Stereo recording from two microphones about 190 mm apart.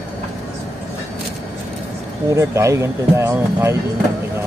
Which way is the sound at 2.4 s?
15° right (ahead or behind).